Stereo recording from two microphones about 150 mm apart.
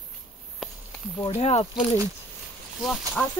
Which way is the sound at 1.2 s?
45° left (ahead or behind).